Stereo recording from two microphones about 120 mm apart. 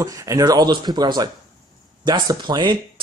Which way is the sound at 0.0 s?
25° right (ahead or behind).